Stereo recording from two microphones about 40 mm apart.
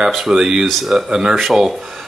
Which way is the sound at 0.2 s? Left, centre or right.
Centre.